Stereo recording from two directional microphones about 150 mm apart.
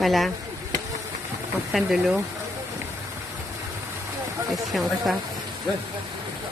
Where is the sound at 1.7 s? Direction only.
Centre (ahead or behind).